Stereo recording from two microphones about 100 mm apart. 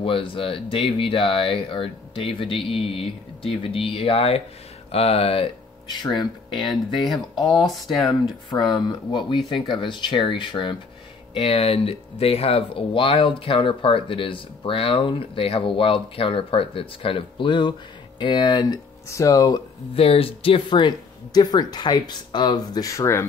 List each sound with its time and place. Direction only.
0.0 s speech: 60° left (ahead or behind)
5.9 s speech: 45° left (ahead or behind)
7.6 s speech: centre (ahead or behind)
8.5 s speech: 50° left (ahead or behind)
11.3 s speech: 75° left (ahead or behind); by 18.8 s 50° left (ahead or behind)
19.0 s speech: 30° left (ahead or behind)
19.9 s speech: 70° left (ahead or behind); by 23.2 s 30° left (ahead or behind)